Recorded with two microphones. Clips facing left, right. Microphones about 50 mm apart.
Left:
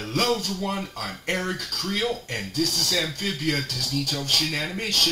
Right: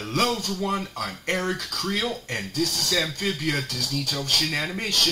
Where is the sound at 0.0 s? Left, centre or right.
Centre.